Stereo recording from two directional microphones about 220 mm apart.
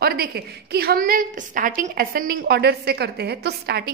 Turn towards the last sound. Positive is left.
turn(degrees=-45)  # may be behind; listen again after turning